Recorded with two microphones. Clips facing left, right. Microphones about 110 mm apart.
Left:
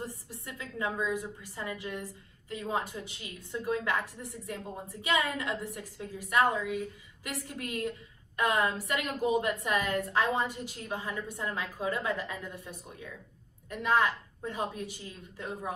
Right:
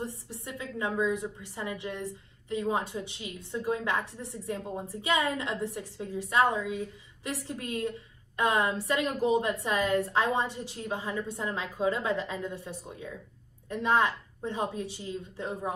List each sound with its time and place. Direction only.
0.0 s a woman's voice: 25° right (ahead or behind)